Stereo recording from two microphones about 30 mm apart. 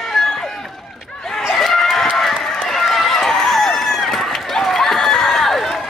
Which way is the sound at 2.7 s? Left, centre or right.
Centre.